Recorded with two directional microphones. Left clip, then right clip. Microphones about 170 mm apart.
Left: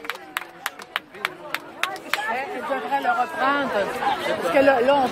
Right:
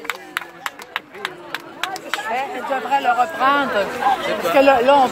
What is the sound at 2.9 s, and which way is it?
Speech, 10° left (ahead or behind).